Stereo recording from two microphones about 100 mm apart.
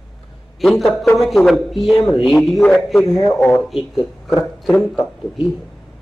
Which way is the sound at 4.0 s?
40° left (ahead or behind).